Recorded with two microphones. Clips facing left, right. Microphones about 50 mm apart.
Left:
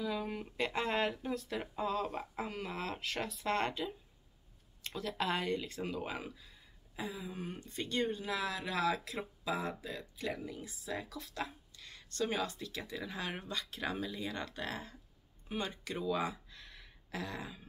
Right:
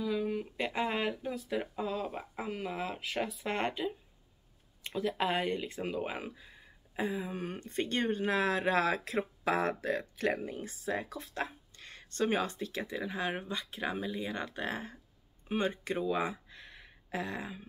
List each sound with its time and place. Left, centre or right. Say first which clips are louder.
0.0 s speech: right 5 dB; centre; by 9.2 s right
9.4 s speech: right 6 dB; right